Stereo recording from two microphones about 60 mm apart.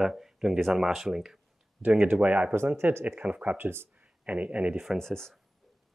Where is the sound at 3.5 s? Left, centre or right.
Right.